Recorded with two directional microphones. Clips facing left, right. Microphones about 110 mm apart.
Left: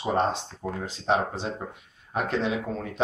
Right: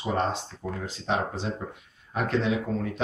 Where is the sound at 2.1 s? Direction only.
20° left (ahead or behind).